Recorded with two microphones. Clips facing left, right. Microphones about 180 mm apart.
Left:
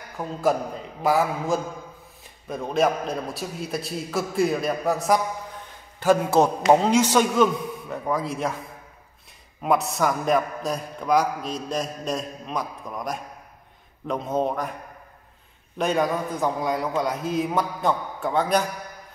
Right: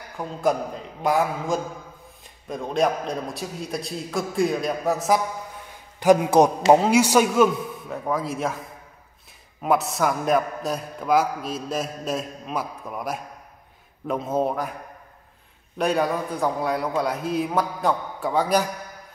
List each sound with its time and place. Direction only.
0.2 s a man's voice: centre (ahead or behind)
5.9 s a man's voice: 15° right (ahead or behind)
15.8 s a man's voice: centre (ahead or behind)